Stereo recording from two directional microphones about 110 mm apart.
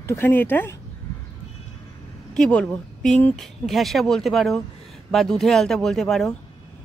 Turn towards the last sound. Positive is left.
turn(degrees=5)  # may be behind; listen again after turning